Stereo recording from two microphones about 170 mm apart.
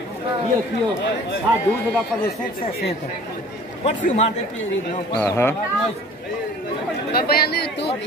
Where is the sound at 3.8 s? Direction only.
40° left (ahead or behind).